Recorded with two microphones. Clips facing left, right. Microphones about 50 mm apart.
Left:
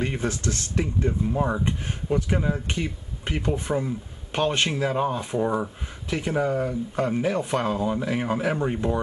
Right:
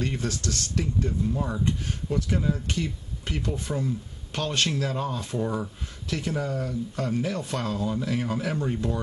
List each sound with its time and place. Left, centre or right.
0.0 s speech: left